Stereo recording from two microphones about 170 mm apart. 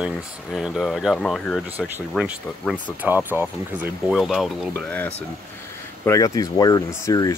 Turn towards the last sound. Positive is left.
turn(degrees=20)  # may be behind; listen again after turning